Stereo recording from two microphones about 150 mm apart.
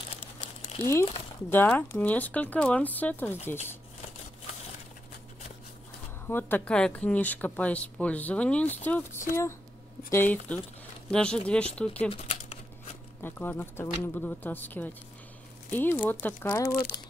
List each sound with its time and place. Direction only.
0.6 s crumpling: 50° left (ahead or behind)
1.5 s speech: 10° left (ahead or behind)
6.2 s speech: 15° left (ahead or behind)
12.1 s a sound: 45° left (ahead or behind)
13.2 s speech: 15° left (ahead or behind)